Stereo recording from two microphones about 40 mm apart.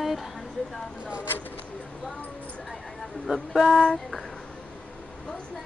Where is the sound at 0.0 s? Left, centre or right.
Centre.